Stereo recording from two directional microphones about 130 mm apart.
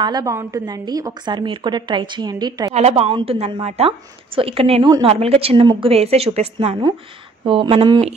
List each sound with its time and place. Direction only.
0.0 s a woman's voice: 30° right (ahead or behind)
2.7 s a woman's voice: 55° right (ahead or behind)
7.4 s a woman's voice: 45° right (ahead or behind)